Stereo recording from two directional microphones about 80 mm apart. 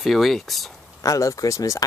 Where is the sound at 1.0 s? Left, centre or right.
Left.